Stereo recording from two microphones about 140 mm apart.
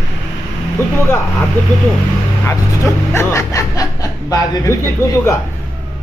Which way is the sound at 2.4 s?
20° left (ahead or behind).